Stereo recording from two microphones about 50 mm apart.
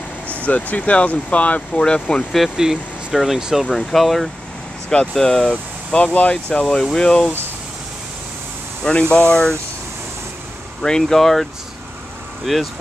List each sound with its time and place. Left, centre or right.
0.5 s speech: left
2.5 s speech: centre
3.7 s speech: centre
5.5 s speech: left
6.6 s speech: centre
9.1 s speech: centre
10.8 s speech: centre
12.5 s speech: centre